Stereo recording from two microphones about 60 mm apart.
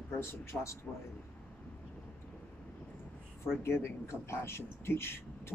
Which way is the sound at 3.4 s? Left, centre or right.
Left.